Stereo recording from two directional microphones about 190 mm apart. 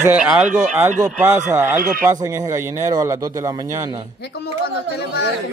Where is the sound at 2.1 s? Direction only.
15° right (ahead or behind).